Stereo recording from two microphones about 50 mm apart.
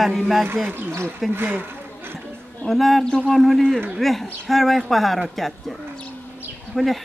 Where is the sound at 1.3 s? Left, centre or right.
Right.